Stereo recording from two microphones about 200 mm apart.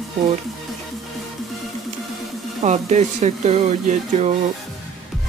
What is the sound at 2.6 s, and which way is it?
Speech, 35° right (ahead or behind).